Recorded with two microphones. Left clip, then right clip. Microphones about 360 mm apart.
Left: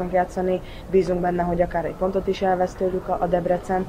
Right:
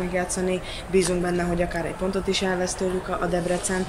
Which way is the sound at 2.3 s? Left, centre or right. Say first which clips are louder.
Left 3 dB; left.